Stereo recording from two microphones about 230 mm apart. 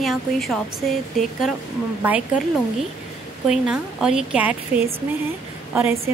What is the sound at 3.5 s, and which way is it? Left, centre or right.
A woman's voice, centre.